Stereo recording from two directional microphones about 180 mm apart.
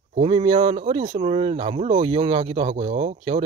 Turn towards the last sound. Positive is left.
turn(degrees=-35)  # may be behind; listen again after turning